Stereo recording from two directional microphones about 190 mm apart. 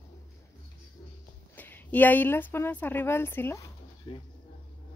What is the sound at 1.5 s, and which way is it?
Speech, 10° left (ahead or behind).